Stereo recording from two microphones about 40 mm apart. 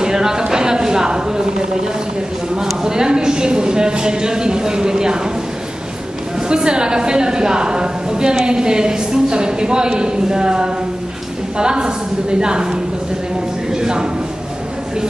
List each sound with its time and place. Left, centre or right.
0.0 s a woman's voice: centre
6.5 s a woman's voice: right